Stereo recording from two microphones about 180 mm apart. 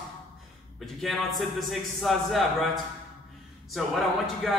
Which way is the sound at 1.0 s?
Centre (ahead or behind).